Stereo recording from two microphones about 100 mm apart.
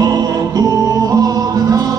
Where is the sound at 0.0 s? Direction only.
40° right (ahead or behind).